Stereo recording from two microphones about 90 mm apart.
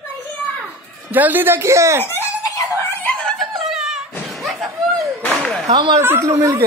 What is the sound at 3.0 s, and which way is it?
Snicker, 10° left (ahead or behind).